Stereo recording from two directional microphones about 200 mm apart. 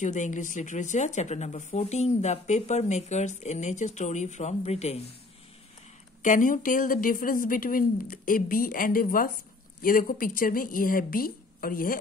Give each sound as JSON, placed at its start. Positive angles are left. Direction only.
{"t": 0.0, "sound": "speech", "side_deg": 40}
{"t": 6.2, "sound": "a woman's voice", "side_deg": 40}